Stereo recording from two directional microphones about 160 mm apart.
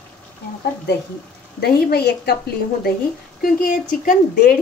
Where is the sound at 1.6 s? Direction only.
85° left.